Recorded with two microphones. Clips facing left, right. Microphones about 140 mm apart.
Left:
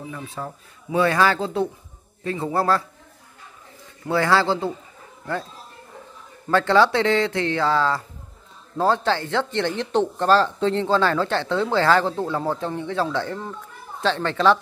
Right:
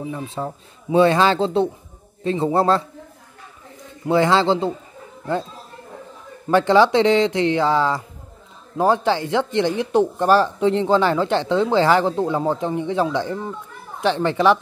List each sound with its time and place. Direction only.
0.0 s speech: 25° right (ahead or behind)
4.0 s speech: 20° right (ahead or behind)
6.5 s speech: 15° right (ahead or behind)